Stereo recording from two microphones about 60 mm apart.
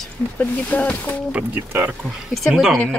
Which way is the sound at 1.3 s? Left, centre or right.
Right.